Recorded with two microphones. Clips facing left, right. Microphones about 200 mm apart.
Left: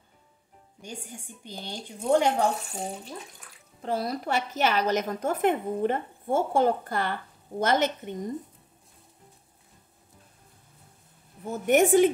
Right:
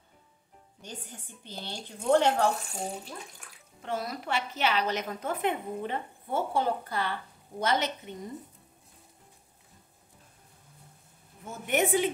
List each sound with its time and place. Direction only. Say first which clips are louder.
0.8 s a woman's voice: left 4 dB; 10° left (ahead or behind)
2.7 s speech: left 1 dB; centre (ahead or behind)
3.8 s a woman's voice: left 5 dB; 35° left (ahead or behind)
11.4 s a woman's voice: left 7 dB; 40° left (ahead or behind)